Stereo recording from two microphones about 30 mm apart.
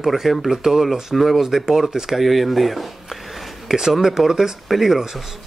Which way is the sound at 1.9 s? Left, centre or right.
Centre.